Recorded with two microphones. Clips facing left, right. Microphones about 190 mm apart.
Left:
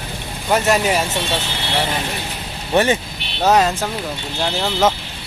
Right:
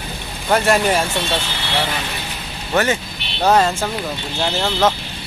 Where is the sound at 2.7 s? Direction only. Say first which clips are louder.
Left 2 dB; 20° left (ahead or behind).